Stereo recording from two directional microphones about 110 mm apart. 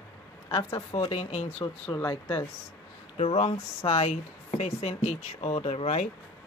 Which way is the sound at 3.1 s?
75° left (ahead or behind).